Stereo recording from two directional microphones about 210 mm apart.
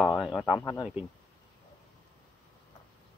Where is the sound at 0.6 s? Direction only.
10° left (ahead or behind).